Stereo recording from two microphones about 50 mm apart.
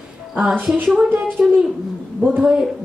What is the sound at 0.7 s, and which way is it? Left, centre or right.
Speech, right.